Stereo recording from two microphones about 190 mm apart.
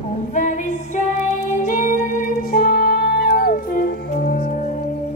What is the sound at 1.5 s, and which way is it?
Music, 40° left (ahead or behind).